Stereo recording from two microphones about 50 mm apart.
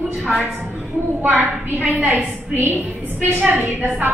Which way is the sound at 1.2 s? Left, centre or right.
Right.